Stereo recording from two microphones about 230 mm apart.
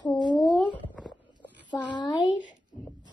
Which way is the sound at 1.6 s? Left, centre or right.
Centre.